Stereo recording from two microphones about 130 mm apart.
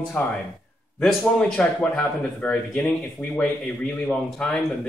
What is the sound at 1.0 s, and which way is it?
A man's voice, 5° left (ahead or behind).